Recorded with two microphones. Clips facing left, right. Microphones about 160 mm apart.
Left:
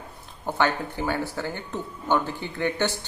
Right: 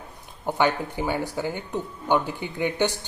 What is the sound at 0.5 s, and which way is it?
Speech, 15° right (ahead or behind).